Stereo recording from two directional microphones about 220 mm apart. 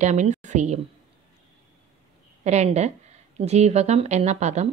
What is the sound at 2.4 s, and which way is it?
A woman's voice, 30° right (ahead or behind).